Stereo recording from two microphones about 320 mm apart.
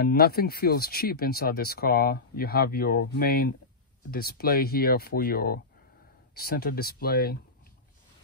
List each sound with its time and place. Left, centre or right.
0.0 s speech: left